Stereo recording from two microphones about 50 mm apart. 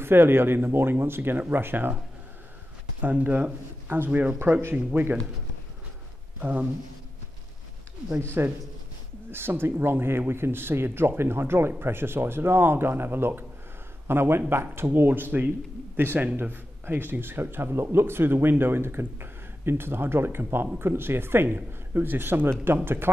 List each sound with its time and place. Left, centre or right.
0.0 s speech: right
3.0 s speech: right
6.4 s speech: right
8.2 s speech: right